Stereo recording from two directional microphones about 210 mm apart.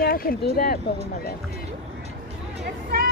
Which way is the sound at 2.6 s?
45° right (ahead or behind).